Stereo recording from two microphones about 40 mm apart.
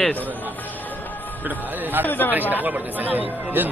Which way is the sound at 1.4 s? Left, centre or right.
Right.